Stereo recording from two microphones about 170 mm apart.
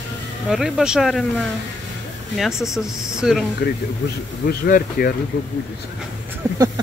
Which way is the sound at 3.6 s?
60° left (ahead or behind).